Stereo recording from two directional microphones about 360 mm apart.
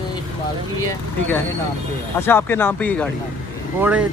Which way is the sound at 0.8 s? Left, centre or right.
Centre.